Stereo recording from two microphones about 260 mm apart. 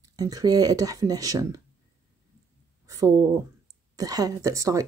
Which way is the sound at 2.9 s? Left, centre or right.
Centre.